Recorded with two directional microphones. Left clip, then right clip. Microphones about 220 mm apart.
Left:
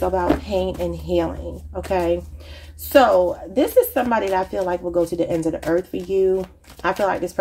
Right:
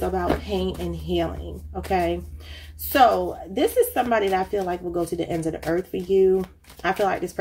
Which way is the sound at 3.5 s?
25° left (ahead or behind).